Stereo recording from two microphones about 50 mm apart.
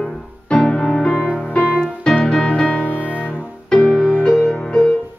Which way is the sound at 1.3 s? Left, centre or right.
Left.